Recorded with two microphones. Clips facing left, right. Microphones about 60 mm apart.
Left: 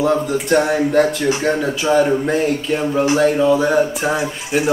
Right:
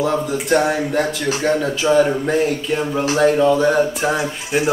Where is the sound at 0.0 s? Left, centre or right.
Centre.